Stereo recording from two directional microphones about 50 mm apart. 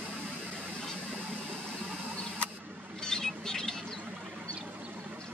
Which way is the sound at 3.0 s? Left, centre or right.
Centre.